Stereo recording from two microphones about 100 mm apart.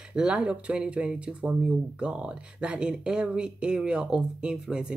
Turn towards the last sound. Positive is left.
turn(degrees=-10)  # may be behind; listen again after turning